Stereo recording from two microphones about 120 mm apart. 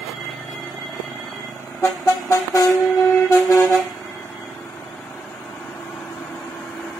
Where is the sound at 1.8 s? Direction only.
25° left (ahead or behind).